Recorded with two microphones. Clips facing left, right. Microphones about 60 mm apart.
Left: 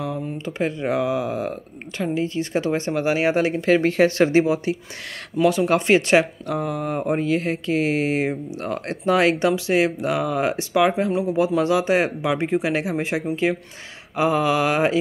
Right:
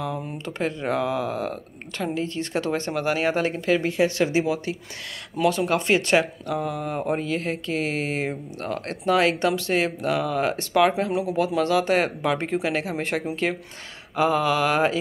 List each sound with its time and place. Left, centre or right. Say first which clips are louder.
0.5 s speech: left 2 dB; centre
3.8 s speech: left 5 dB; left
5.4 s speech: left 3 dB; centre
5.7 s speech: left 4 dB; left
9.6 s speech: left 4 dB; centre
10.7 s speech: even; centre
11.3 s speech: left 2 dB; centre